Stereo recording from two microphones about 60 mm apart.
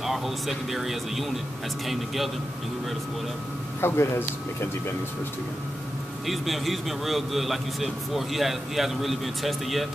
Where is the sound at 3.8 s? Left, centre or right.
Left.